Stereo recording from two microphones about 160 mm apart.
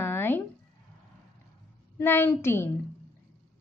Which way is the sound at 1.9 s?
15° left (ahead or behind).